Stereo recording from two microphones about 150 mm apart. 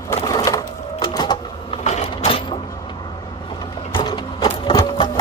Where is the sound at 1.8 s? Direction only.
45° left (ahead or behind).